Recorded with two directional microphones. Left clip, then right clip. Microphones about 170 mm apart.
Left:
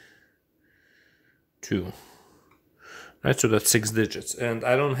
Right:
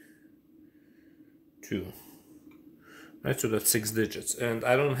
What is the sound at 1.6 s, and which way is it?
Speech, 50° left (ahead or behind).